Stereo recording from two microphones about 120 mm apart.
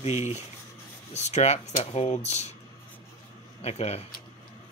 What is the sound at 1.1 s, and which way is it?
Speech, 65° left (ahead or behind).